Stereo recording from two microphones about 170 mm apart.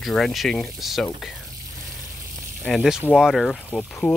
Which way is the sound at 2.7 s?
Centre (ahead or behind).